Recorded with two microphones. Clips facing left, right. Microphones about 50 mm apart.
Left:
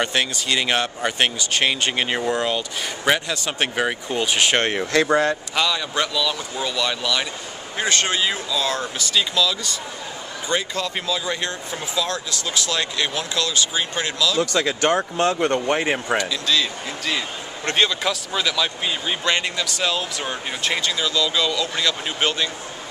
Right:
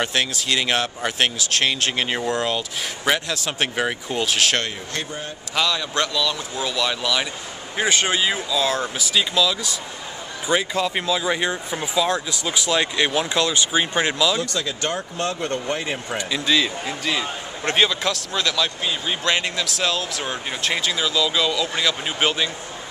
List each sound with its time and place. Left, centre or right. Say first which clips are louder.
0.0 s a man's voice: left 1 dB; centre
4.7 s speech: left 12 dB; left
5.6 s a man's voice: right 2 dB; centre; by 14.4 s right
14.4 s speech: left 5 dB; left
16.2 s a man's voice: right 1 dB; centre